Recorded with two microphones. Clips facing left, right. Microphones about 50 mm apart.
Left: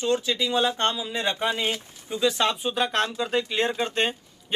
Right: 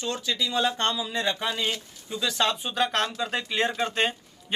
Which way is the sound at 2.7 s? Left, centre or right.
Centre.